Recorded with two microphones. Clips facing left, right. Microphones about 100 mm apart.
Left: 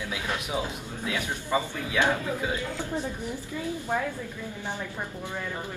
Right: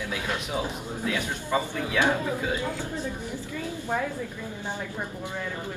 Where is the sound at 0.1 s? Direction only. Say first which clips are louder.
Even; 15° left (ahead or behind).